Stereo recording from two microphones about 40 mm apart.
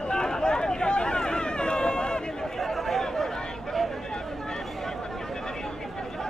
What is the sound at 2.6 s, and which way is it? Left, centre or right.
Chatter, centre.